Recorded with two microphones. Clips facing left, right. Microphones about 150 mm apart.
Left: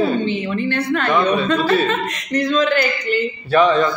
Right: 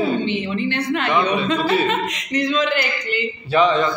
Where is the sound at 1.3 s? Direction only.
15° right (ahead or behind).